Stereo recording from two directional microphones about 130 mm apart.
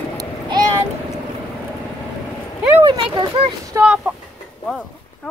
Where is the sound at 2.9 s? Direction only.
40° right (ahead or behind).